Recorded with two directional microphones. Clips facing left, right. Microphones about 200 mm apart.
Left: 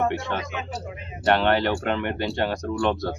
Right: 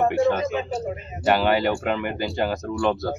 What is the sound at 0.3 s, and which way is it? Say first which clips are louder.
Speech: right 7 dB; centre (ahead or behind).